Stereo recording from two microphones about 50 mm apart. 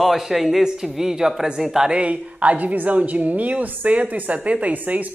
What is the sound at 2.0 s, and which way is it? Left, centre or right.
A woman's voice, right.